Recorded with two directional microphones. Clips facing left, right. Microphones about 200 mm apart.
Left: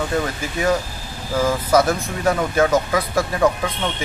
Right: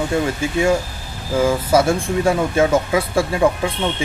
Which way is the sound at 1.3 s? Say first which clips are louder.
Right 2 dB; 25° right (ahead or behind).